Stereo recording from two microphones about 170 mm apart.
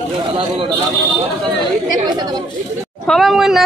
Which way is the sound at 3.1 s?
Centre (ahead or behind).